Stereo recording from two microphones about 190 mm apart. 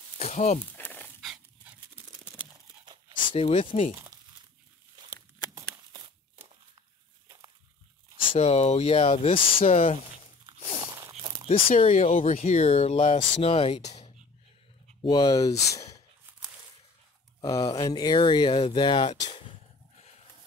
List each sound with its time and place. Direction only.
0.2 s speech: 40° left (ahead or behind)
0.7 s dog: 10° left (ahead or behind)
3.2 s speech: 30° left (ahead or behind)
5.6 s walk: 25° right (ahead or behind)
8.2 s speech: 30° left (ahead or behind)
11.0 s a sound: 15° right (ahead or behind)
11.4 s speech: 30° left (ahead or behind)
15.0 s speech: 25° left (ahead or behind)
15.7 s a sound: 15° left (ahead or behind)
17.4 s speech: 25° left (ahead or behind)